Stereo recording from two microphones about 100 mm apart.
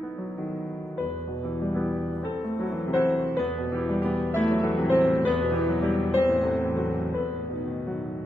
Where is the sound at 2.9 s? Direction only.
30° left (ahead or behind).